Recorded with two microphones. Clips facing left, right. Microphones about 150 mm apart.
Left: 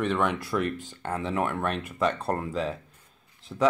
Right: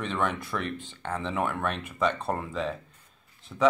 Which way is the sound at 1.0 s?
5° left (ahead or behind).